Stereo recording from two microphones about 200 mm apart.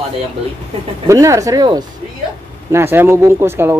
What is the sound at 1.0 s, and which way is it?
Speech, 15° right (ahead or behind).